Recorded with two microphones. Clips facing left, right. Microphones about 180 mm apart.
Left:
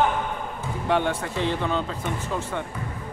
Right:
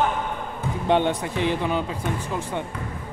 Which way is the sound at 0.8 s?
20° right (ahead or behind).